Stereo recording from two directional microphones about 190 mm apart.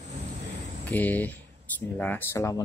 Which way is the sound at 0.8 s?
10° left (ahead or behind).